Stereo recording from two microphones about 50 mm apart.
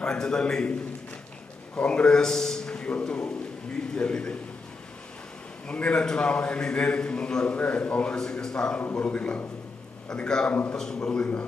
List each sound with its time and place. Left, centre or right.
0.0 s a man's voice: centre
1.8 s a man's voice: left
5.7 s a man's voice: left
8.7 s a man's voice: left
10.0 s a man's voice: centre